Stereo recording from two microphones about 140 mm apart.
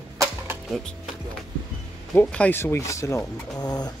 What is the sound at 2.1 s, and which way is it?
Speech, 10° left (ahead or behind).